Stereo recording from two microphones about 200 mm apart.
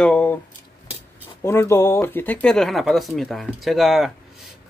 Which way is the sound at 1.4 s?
15° left (ahead or behind).